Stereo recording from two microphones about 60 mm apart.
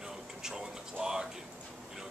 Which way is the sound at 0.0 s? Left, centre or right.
Centre.